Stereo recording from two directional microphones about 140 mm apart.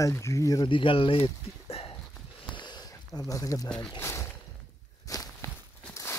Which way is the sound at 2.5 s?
30° left (ahead or behind).